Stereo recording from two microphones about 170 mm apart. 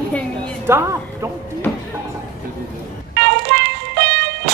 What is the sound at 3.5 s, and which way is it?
Music, 65° right (ahead or behind).